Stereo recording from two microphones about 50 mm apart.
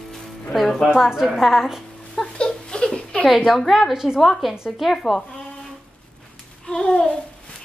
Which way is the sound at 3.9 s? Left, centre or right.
Centre.